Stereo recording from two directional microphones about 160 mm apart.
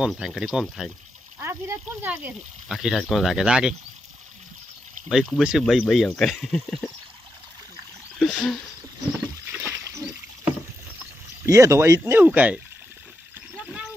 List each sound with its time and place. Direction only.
0.0 s speech: 5° right (ahead or behind)
1.4 s speech: 15° right (ahead or behind)
5.1 s speech: centre (ahead or behind)
8.2 s speech: centre (ahead or behind)
9.2 s a sound: 10° right (ahead or behind)
11.4 s speech: 20° right (ahead or behind)
13.6 s a sound: 5° right (ahead or behind)